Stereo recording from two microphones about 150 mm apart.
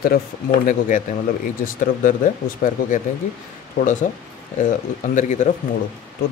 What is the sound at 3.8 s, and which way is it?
Speech, 55° left (ahead or behind).